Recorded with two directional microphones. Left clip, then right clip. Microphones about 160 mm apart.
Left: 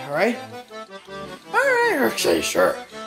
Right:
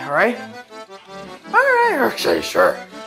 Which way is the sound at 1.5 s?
10° left (ahead or behind).